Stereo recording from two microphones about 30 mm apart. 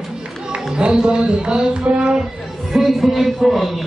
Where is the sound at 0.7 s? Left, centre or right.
Right.